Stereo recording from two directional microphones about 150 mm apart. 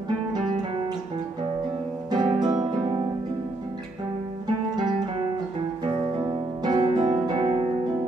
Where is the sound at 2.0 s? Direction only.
30° right (ahead or behind).